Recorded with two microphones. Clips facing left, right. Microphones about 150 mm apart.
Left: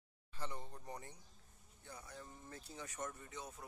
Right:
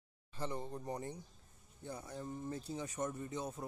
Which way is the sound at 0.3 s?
25° right (ahead or behind).